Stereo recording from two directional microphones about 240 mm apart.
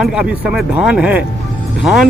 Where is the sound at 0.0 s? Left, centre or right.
Centre.